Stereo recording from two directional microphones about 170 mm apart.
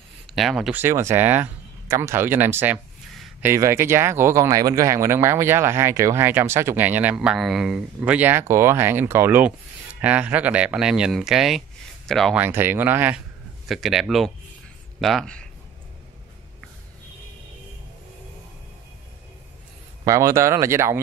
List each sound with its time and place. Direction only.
0.3 s speech: centre (ahead or behind)
12.4 s speech: 10° right (ahead or behind); by 15.4 s 5° left (ahead or behind)
20.1 s speech: 20° right (ahead or behind)